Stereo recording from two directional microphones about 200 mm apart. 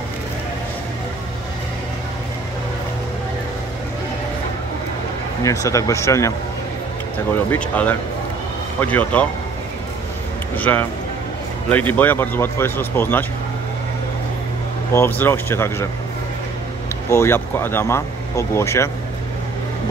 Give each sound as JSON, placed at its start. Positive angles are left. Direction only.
{"t": 5.4, "sound": "speech", "side_deg": 15}
{"t": 7.5, "sound": "speech", "side_deg": 5}
{"t": 10.5, "sound": "speech", "side_deg": 10}
{"t": 15.0, "sound": "speech", "side_deg": 10}
{"t": 17.1, "sound": "speech", "side_deg": 10}